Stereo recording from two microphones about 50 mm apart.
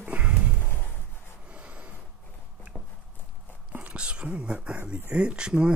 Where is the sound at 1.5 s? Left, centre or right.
Right.